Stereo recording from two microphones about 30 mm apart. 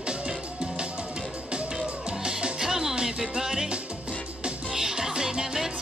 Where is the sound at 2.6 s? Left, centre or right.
Centre.